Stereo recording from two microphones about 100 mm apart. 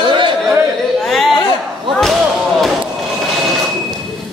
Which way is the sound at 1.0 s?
Centre (ahead or behind).